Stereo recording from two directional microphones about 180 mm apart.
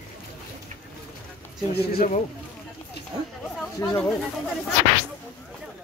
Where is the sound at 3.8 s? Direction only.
10° left (ahead or behind).